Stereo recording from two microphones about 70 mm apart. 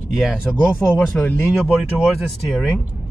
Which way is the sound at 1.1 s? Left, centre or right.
Left.